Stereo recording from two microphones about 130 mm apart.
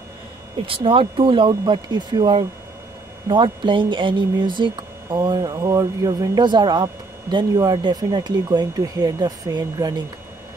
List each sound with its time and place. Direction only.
0.6 s speech: 45° right (ahead or behind)